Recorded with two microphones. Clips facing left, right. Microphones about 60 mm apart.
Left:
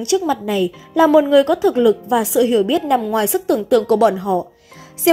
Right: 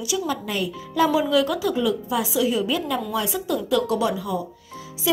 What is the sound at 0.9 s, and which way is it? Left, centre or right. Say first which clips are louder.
A woman's voice: left 8 dB; left.